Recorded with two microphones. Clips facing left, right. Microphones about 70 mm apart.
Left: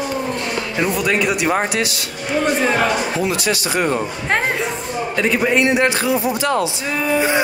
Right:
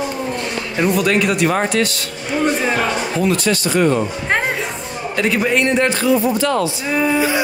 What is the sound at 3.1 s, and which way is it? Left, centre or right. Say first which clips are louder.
Speech: right 2 dB; centre.